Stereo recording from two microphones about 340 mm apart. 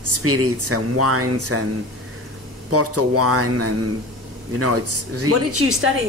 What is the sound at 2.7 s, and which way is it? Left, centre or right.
Speech, right.